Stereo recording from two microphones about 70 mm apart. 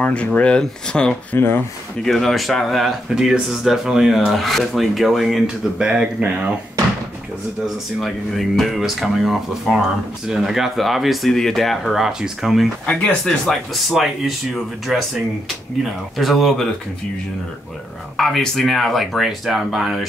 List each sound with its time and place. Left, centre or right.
0.0 s speech: centre
1.3 s speech: left
2.0 s speech: centre
7.6 s speech: centre
18.1 s speech: centre